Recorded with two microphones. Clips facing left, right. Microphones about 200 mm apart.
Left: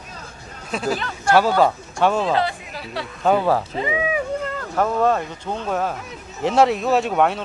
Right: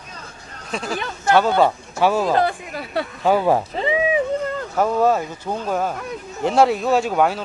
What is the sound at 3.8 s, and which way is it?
Speech, 30° right (ahead or behind).